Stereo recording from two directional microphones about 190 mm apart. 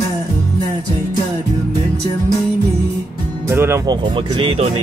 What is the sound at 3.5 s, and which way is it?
Speech, 15° right (ahead or behind).